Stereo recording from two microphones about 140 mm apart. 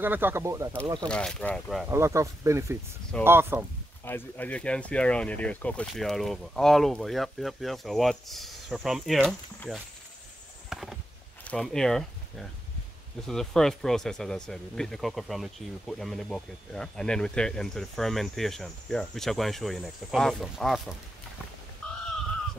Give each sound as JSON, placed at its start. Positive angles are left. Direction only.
{"t": 0.0, "sound": "speech", "side_deg": -15}
{"t": 1.0, "sound": "speech", "side_deg": 5}
{"t": 1.9, "sound": "speech", "side_deg": -20}
{"t": 4.0, "sound": "speech", "side_deg": 15}
{"t": 10.7, "sound": "a sound", "side_deg": 0}
{"t": 11.4, "sound": "speech", "side_deg": 5}
{"t": 21.8, "sound": "a sound", "side_deg": 5}